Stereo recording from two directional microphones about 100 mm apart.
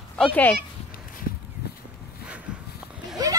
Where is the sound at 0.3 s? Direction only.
20° left (ahead or behind).